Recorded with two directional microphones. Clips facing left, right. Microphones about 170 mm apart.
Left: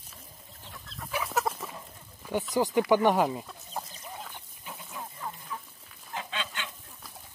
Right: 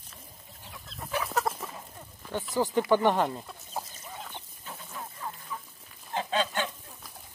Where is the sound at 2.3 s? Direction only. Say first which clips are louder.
Left 4 dB; 15° left (ahead or behind).